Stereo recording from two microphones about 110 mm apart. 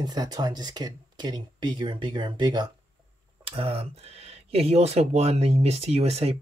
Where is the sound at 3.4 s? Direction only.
55° right (ahead or behind).